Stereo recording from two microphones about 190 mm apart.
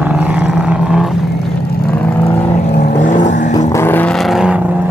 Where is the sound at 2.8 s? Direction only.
40° left (ahead or behind).